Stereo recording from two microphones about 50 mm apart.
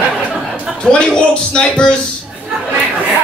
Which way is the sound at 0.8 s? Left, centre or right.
Centre.